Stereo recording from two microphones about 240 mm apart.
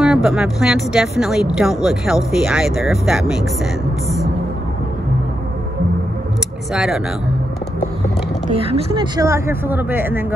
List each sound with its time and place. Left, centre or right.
0.0 s speech: centre
6.7 s speech: centre
8.5 s speech: right